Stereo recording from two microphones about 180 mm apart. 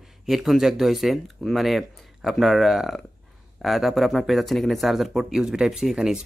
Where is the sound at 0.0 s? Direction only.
Centre (ahead or behind).